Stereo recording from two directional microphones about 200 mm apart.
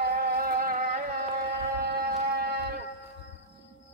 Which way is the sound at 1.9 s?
50° right (ahead or behind).